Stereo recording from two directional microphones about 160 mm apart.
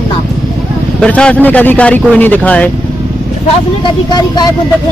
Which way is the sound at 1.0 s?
5° left (ahead or behind).